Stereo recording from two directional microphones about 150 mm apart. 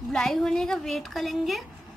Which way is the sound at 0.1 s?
5° left (ahead or behind).